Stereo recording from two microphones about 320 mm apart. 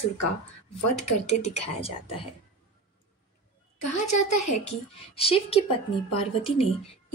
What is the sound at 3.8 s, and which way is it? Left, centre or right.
Speech, left.